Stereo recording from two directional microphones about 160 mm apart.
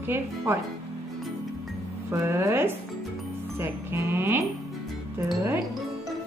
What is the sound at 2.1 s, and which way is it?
Speech, 15° right (ahead or behind).